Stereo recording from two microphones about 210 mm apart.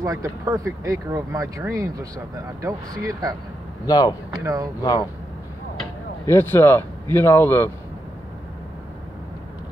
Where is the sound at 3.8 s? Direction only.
20° left (ahead or behind).